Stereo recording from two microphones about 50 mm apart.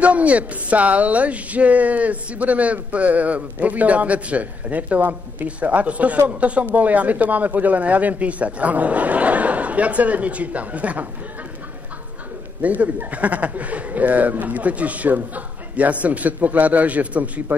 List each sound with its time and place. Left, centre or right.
0.0 s speech: right
12.6 s speech: right